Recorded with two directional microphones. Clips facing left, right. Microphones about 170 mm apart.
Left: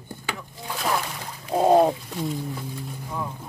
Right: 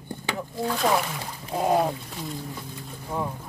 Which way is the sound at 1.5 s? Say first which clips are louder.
Left 5 dB; 25° left (ahead or behind).